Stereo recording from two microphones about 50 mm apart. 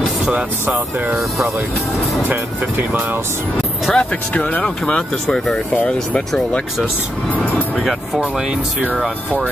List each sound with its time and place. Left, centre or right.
0.3 s speech: right
3.9 s speech: left
4.6 s speech: centre
7.3 s music: left
7.7 s speech: centre